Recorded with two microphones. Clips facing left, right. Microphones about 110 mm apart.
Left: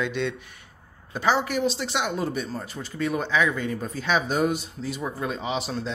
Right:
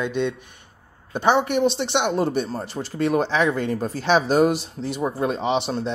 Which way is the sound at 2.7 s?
75° right (ahead or behind).